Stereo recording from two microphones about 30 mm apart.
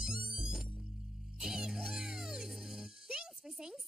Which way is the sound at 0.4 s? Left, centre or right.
Centre.